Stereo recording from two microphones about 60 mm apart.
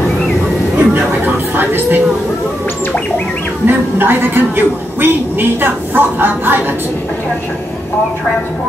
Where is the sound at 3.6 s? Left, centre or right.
Right.